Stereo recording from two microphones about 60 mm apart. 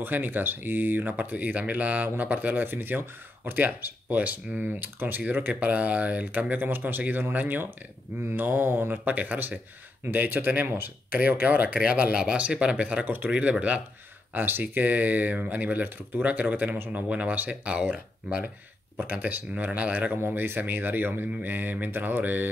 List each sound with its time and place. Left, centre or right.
0.0 s speech: right
13.0 s speech: right
14.3 s speech: right
16.9 s speech: right
18.9 s speech: right
20.2 s speech: right